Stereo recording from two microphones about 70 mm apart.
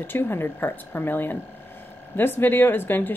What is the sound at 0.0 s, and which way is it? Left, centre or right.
A woman's voice, left.